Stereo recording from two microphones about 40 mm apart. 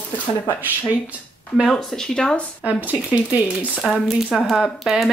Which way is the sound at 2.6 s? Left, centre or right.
Right.